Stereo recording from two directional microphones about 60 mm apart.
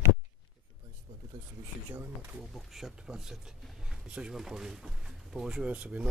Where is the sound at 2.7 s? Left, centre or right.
Centre.